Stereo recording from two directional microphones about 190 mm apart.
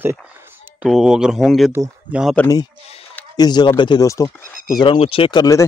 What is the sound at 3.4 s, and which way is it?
Speech, 20° left (ahead or behind).